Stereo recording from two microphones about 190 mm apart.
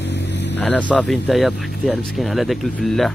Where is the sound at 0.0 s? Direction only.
65° left (ahead or behind).